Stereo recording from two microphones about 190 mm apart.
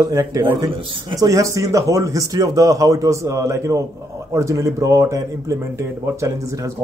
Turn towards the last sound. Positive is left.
turn(degrees=-15)  # may be behind; listen again after turning